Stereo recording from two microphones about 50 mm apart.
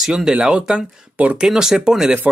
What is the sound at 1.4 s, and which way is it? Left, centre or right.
Speech, centre.